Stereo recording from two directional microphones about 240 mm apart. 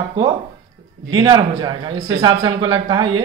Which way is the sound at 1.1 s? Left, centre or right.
Right.